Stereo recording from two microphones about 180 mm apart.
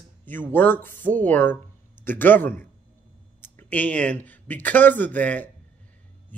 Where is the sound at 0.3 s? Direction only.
10° left (ahead or behind).